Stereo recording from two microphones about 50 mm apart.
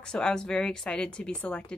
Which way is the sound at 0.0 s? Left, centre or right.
Centre.